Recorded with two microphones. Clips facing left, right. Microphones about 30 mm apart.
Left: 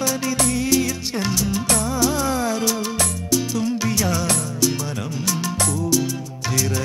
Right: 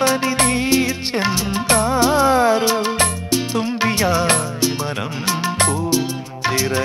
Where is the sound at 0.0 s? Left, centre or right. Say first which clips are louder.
Right 5 dB; right.